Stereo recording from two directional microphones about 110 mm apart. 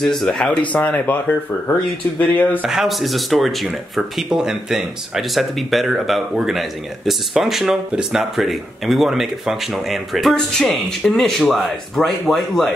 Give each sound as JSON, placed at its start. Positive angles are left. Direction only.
{"t": 0.0, "sound": "speech", "side_deg": 0}
{"t": 2.6, "sound": "speech", "side_deg": -5}